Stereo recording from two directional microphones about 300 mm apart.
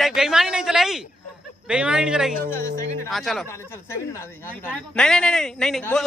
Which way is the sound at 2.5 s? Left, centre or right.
Centre.